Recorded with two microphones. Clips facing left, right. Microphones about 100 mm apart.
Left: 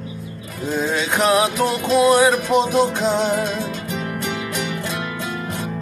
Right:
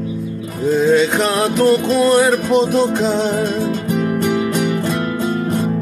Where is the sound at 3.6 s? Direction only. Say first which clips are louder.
Right 8 dB; 45° right (ahead or behind).